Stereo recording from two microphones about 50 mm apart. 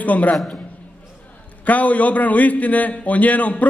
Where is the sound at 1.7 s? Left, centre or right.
Left.